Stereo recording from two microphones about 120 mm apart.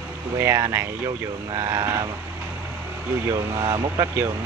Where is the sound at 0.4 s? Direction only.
25° right (ahead or behind).